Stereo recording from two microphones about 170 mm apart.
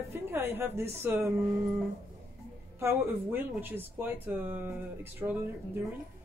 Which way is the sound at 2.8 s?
15° right (ahead or behind).